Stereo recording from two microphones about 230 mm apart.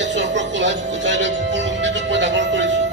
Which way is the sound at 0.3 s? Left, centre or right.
Right.